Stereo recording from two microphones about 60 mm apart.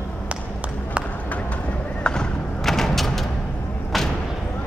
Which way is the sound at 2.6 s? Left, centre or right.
Centre.